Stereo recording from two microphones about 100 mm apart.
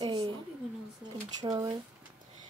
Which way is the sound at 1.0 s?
45° right (ahead or behind).